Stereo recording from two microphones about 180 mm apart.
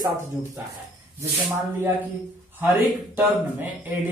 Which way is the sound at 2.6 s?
10° right (ahead or behind).